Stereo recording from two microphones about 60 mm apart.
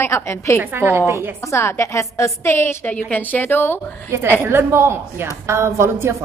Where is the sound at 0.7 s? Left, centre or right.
Right.